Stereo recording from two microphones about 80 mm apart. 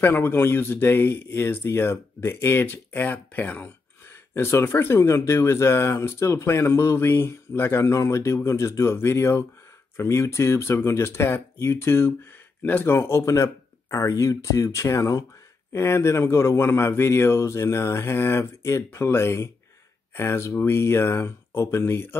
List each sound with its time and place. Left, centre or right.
0.0 s speech: left